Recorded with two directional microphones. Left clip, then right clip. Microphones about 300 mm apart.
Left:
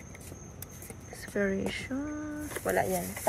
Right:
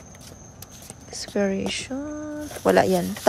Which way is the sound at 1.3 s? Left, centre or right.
Centre.